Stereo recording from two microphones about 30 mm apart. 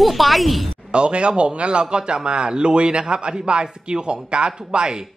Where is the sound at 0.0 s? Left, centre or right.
Centre.